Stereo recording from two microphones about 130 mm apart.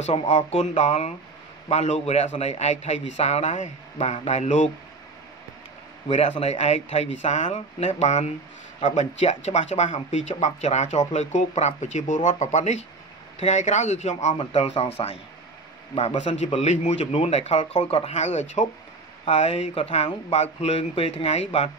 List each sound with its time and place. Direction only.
0.3 s a man's voice: 60° left (ahead or behind)
6.0 s a man's voice: 60° left (ahead or behind)
16.5 s a man's voice: 60° left (ahead or behind)